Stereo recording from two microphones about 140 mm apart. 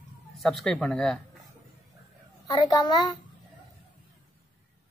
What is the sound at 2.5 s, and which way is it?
Speech, 30° left (ahead or behind).